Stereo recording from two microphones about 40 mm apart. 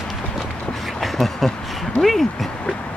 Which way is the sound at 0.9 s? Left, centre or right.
Centre.